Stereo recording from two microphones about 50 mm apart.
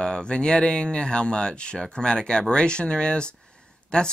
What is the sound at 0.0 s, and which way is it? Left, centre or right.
Speech, centre.